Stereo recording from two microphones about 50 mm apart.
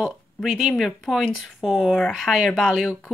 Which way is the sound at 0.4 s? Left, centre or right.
Centre.